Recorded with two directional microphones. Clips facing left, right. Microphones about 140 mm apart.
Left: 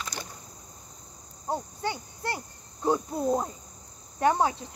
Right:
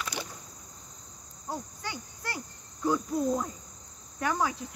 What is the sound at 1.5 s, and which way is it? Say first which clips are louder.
Hoot: left 6 dB; 30° left (ahead or behind).